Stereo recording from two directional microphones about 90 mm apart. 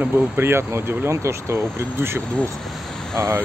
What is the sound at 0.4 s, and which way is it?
Speech, 25° right (ahead or behind).